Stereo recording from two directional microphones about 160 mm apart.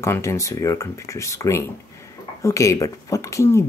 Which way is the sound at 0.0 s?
20° left (ahead or behind).